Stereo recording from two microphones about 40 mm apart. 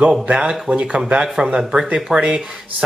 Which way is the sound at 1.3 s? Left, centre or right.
Centre.